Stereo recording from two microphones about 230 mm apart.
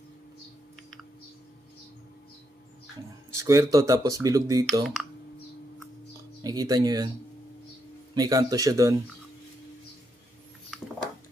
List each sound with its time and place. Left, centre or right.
3.3 s speech: centre
6.4 s speech: centre
8.1 s speech: centre